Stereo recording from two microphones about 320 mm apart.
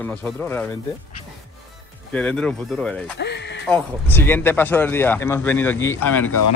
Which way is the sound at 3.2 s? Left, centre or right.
Left.